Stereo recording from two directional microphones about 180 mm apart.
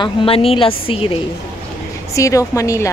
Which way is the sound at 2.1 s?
20° left (ahead or behind).